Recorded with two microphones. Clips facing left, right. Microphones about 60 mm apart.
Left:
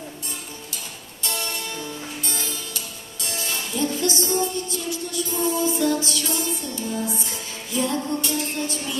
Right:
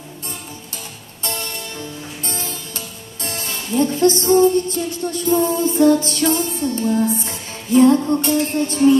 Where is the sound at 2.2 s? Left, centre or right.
Right.